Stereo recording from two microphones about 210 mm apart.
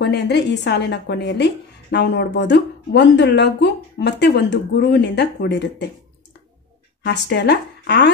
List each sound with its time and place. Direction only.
0.0 s a woman's voice: 55° left (ahead or behind)
7.1 s a woman's voice: 55° left (ahead or behind)